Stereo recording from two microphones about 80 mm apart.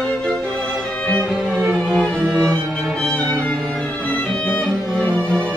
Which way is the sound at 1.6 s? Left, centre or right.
Centre.